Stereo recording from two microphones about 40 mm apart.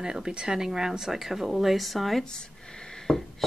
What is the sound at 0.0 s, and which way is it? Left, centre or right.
Speech, centre.